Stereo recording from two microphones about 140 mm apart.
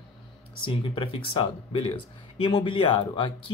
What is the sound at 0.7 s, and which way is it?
Speech, 35° left (ahead or behind).